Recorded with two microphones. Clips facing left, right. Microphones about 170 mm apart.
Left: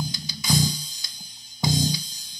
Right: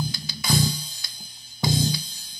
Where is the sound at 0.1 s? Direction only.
55° right (ahead or behind).